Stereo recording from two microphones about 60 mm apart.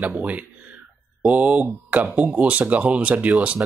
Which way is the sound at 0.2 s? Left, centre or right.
Right.